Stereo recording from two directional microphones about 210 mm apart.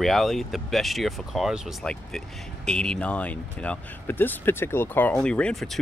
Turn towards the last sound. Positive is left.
turn(degrees=0)  # may be behind; listen again after turning